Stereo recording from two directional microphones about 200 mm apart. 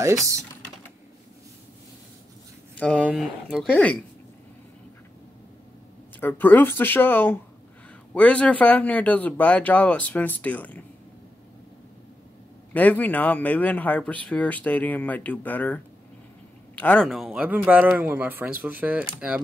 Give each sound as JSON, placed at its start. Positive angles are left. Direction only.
{"t": 0.0, "sound": "speech", "side_deg": -15}
{"t": 2.8, "sound": "a man's voice", "side_deg": 5}
{"t": 6.1, "sound": "a man's voice", "side_deg": 10}
{"t": 12.7, "sound": "a man's voice", "side_deg": 10}